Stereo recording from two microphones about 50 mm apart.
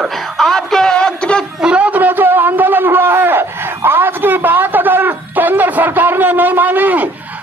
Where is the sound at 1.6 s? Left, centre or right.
Right.